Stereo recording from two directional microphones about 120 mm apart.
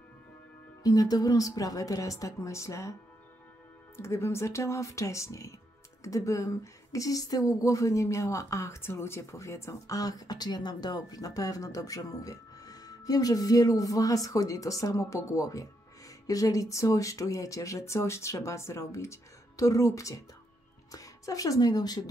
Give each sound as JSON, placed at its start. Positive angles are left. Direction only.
{"t": 0.8, "sound": "a woman's voice", "side_deg": 30}